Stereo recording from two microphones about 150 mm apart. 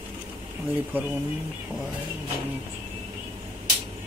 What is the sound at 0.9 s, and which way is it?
Speech, 15° right (ahead or behind).